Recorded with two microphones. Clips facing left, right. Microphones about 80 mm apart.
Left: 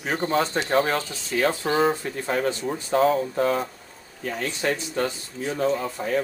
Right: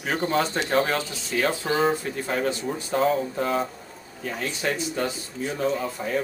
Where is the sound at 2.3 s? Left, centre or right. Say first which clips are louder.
Left 2 dB; left.